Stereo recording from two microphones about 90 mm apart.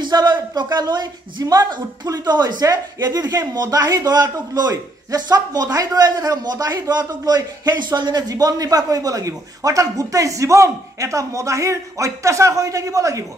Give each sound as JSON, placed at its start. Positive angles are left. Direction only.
{"t": 0.0, "sound": "speech", "side_deg": -55}